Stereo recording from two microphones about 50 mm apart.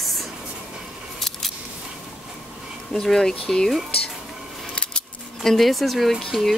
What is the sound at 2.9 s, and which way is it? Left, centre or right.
Speech, centre.